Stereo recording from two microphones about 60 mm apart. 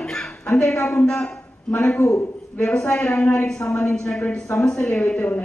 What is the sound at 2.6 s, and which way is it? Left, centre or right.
A man's voice, centre.